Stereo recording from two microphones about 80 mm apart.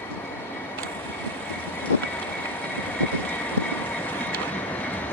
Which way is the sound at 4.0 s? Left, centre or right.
Centre.